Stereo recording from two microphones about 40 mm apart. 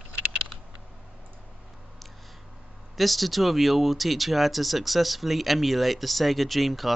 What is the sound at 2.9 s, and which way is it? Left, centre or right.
Speech, centre.